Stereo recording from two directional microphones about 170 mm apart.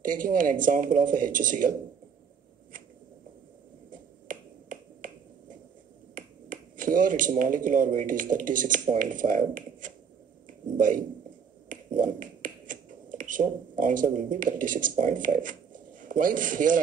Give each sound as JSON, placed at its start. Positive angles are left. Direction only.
{"t": 0.0, "sound": "speech", "side_deg": -50}
{"t": 3.9, "sound": "finger snapping", "side_deg": -50}
{"t": 6.1, "sound": "speech", "side_deg": -50}